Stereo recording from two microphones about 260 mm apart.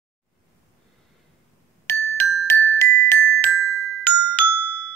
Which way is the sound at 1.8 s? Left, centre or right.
Centre.